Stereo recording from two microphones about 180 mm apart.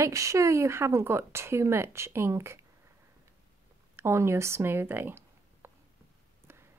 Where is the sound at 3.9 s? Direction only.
15° right (ahead or behind).